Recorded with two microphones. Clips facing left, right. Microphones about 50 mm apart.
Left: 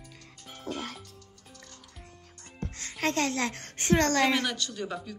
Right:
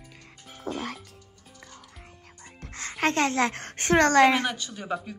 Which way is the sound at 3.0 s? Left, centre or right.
Right.